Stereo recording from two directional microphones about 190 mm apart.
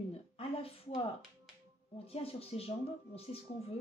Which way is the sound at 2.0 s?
30° left (ahead or behind).